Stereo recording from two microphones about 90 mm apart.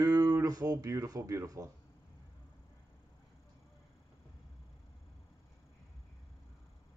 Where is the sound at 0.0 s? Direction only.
45° right (ahead or behind).